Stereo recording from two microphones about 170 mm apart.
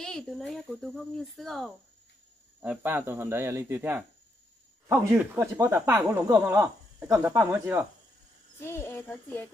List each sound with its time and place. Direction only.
0.0 s speech: 5° left (ahead or behind)
2.6 s speech: 10° right (ahead or behind)
8.6 s speech: 15° left (ahead or behind)